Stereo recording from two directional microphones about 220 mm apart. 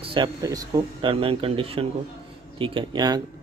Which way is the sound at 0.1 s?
20° right (ahead or behind).